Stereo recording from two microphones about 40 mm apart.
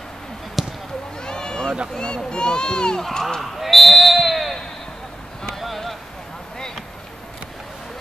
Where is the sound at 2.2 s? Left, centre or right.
Left.